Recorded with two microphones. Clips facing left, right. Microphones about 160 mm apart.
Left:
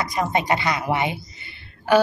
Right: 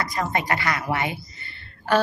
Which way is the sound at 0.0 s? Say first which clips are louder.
Left 3 dB; 20° left (ahead or behind).